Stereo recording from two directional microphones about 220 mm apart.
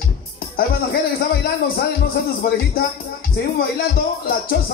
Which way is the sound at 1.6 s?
45° left (ahead or behind).